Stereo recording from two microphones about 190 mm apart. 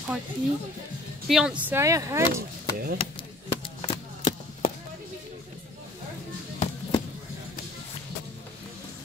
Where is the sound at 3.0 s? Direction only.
30° left (ahead or behind).